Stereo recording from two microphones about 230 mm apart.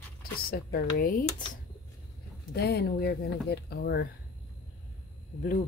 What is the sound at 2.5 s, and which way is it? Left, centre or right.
Speech, left.